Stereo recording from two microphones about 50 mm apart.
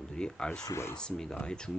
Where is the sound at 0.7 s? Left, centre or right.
Left.